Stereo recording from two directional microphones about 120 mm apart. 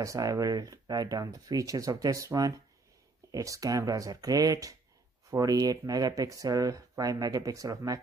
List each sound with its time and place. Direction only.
0.0 s speech: 30° right (ahead or behind)